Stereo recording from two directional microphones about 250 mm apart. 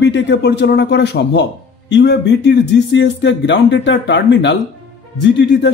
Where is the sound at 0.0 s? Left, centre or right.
Left.